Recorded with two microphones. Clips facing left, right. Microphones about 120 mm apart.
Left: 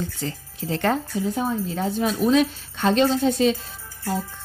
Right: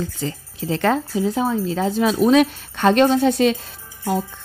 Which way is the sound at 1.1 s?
90° right.